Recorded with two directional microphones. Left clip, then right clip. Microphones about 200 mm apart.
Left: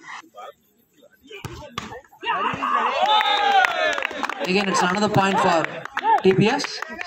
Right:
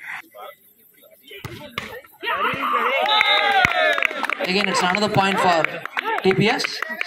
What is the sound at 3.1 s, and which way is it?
Run, 5° right (ahead or behind).